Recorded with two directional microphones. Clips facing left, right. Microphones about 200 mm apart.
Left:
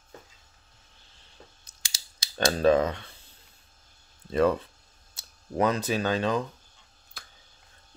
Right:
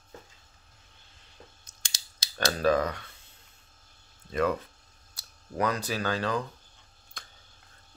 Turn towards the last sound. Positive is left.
turn(degrees=5)  # may be behind; listen again after turning